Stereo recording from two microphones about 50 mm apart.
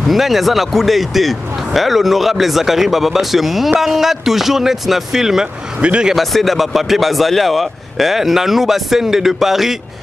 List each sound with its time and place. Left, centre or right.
0.1 s speech: centre
5.8 s a man's voice: right
6.1 s speech: centre